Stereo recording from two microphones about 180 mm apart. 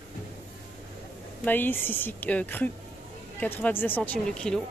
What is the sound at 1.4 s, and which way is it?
Speech, 10° left (ahead or behind).